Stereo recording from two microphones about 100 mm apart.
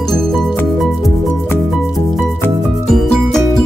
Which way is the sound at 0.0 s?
Centre (ahead or behind).